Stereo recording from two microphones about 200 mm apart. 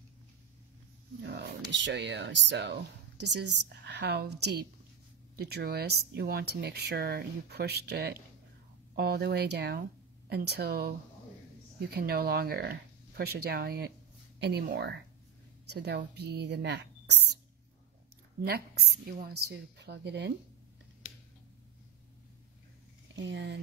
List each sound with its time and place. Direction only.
1.2 s speech: 55° right (ahead or behind)
18.4 s speech: 50° right (ahead or behind)
23.1 s speech: 65° right (ahead or behind)